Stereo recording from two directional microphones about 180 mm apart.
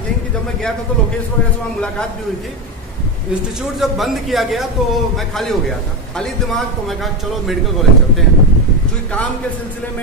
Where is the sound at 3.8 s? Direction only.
Centre (ahead or behind).